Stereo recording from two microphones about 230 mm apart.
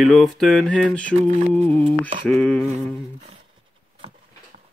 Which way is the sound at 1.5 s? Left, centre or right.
Centre.